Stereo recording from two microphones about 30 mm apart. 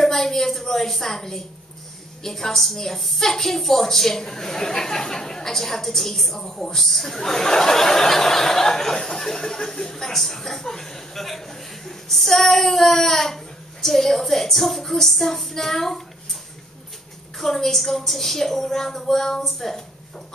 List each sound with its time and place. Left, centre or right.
0.0 s a woman's voice: centre
17.4 s a woman's voice: centre